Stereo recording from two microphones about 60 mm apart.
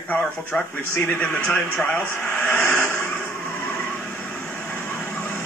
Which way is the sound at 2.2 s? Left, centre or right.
Left.